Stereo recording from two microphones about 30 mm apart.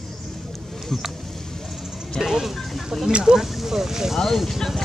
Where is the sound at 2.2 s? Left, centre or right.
Centre.